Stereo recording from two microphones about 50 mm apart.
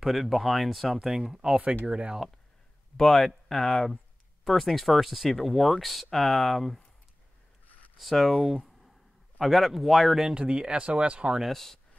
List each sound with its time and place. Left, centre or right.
0.0 s speech: centre
3.0 s speech: centre
8.0 s speech: centre
8.5 s a sound: centre
9.4 s speech: centre
10.3 s speech: centre
11.3 s speech: centre